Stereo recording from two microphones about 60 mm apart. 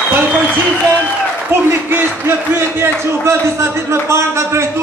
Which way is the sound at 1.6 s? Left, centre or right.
Right.